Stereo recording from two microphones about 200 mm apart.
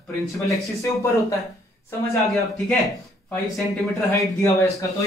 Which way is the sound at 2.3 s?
5° left (ahead or behind).